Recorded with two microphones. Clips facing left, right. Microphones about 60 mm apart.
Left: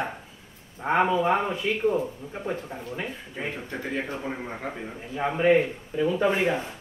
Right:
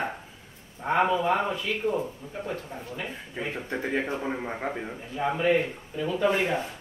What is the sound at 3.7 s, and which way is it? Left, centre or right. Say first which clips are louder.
Speech: right 4 dB; centre.